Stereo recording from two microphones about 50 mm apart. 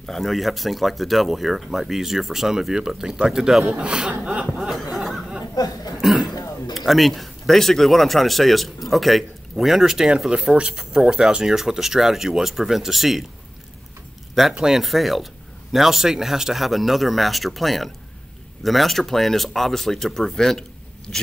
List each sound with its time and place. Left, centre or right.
0.0 s speech: centre
3.6 s a man's voice: centre
4.2 s chuckle: right
4.7 s a sound: centre
5.9 s speech: centre
10.3 s speech: centre
14.5 s speech: centre
14.8 s speech: centre